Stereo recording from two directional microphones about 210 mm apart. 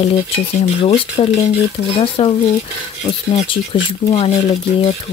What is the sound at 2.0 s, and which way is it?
Speech, 25° left (ahead or behind).